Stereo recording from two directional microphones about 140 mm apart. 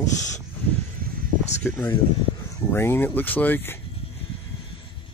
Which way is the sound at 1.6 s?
15° left (ahead or behind).